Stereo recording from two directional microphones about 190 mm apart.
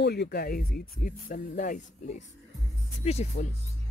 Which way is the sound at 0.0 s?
60° left (ahead or behind).